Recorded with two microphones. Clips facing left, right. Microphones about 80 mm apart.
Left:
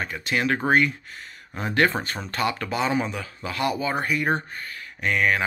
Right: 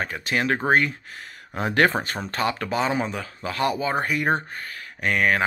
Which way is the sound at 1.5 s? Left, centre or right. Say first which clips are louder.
Right 2 dB; right.